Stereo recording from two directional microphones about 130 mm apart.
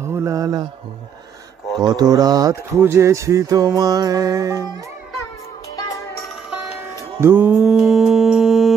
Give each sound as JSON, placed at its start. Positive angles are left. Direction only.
{"t": 0.0, "sound": "mantra", "side_deg": -20}
{"t": 1.8, "sound": "speech", "side_deg": -30}
{"t": 2.8, "sound": "music", "side_deg": -20}
{"t": 5.8, "sound": "music", "side_deg": 25}
{"t": 7.2, "sound": "mantra", "side_deg": -15}